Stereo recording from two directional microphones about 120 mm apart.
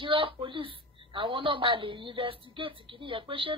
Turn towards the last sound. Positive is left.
turn(degrees=-45)  # may be behind; listen again after turning